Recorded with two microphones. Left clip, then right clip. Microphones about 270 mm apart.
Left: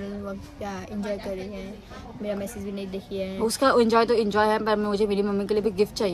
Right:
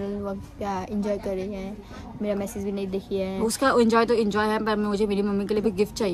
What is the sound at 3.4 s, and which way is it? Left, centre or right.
Speech, centre.